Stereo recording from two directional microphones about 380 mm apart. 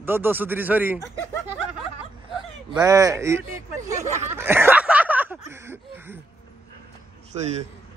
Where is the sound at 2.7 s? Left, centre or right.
Centre.